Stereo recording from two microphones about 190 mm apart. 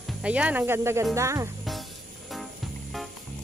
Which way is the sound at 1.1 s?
15° right (ahead or behind).